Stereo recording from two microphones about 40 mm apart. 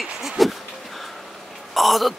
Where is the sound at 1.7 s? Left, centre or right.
Centre.